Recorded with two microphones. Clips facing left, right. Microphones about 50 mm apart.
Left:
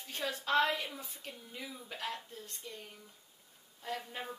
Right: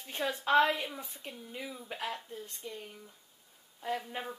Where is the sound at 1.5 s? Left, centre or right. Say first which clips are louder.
Right 4 dB; centre.